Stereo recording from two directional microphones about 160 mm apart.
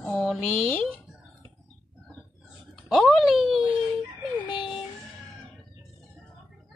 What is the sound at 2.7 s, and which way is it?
Speech, centre (ahead or behind).